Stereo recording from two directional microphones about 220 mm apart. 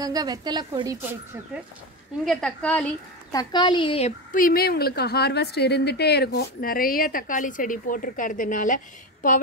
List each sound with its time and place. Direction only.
0.0 s a woman's voice: 15° right (ahead or behind)
2.2 s a woman's voice: 5° left (ahead or behind); by 9.4 s 35° left (ahead or behind)